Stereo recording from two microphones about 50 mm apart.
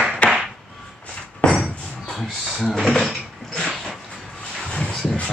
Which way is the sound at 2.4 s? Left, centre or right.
Centre.